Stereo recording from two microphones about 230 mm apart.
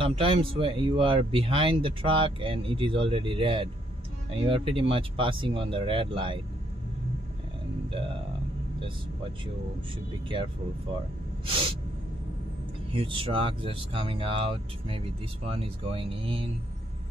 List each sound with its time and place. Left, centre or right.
0.0 s speech: right
11.4 s speech: right
12.9 s speech: right